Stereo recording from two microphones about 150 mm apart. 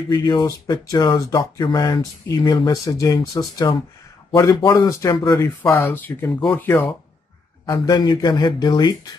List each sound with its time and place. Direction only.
0.1 s speech: 30° left (ahead or behind)
5.4 s speech: 15° left (ahead or behind)